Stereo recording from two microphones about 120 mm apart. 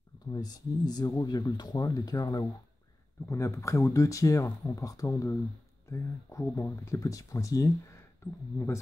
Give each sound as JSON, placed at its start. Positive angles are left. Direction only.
{"t": 0.3, "sound": "speech", "side_deg": 35}